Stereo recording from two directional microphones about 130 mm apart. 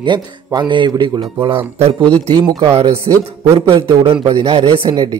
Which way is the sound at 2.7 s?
50° right (ahead or behind).